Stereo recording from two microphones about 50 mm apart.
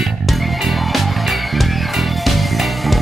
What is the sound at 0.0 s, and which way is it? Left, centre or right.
Music, centre.